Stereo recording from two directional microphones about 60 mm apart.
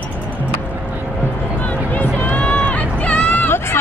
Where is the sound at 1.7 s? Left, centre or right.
Left.